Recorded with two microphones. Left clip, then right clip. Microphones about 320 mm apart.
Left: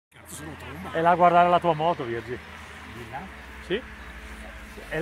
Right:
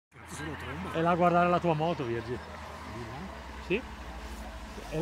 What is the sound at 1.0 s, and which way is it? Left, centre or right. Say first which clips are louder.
Speech: left 7 dB; left.